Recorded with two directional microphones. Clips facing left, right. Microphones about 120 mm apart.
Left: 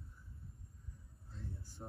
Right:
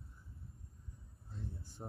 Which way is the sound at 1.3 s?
25° right (ahead or behind).